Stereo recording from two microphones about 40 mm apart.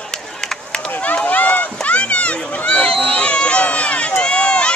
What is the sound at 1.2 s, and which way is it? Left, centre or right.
Run, left.